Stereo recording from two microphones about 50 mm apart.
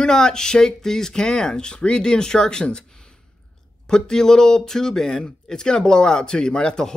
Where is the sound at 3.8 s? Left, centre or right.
Centre.